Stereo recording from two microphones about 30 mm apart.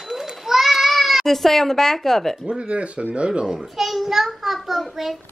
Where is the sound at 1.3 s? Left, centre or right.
Centre.